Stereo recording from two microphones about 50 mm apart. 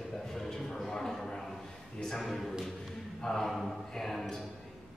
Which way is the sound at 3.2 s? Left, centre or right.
Centre.